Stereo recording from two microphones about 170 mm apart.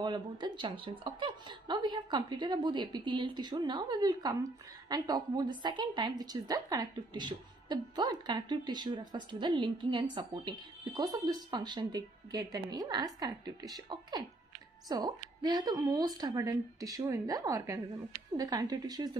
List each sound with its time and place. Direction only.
0.0 s a woman's voice: 25° right (ahead or behind)